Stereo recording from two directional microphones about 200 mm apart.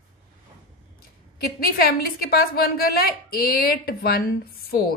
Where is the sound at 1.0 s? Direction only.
45° left (ahead or behind).